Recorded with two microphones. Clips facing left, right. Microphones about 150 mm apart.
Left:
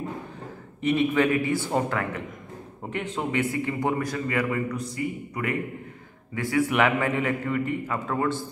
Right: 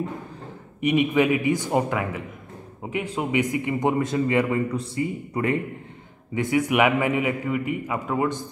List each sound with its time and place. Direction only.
0.7 s a man's voice: 15° right (ahead or behind)